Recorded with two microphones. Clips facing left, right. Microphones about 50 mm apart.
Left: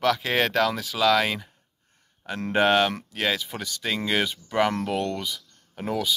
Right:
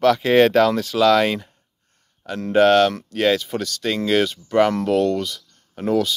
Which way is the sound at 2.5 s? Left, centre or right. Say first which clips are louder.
Right 6 dB; centre.